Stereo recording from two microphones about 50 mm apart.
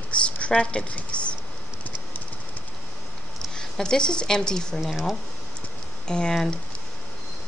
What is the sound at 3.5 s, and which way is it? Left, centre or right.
A woman's voice, centre.